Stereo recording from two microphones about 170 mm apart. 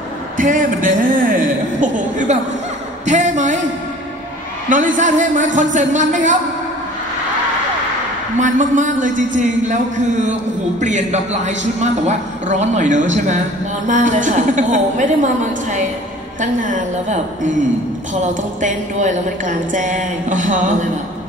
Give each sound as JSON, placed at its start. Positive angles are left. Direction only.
{"t": 0.4, "sound": "a sound", "side_deg": -50}
{"t": 3.1, "sound": "a man's voice", "side_deg": -45}
{"t": 4.6, "sound": "a man's voice", "side_deg": -50}
{"t": 8.4, "sound": "a man's voice", "side_deg": -50}